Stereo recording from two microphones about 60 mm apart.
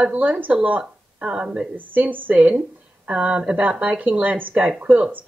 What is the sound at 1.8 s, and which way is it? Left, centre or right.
Speech, right.